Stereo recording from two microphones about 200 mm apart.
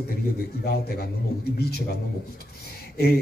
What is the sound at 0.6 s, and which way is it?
A man's voice, 50° left (ahead or behind).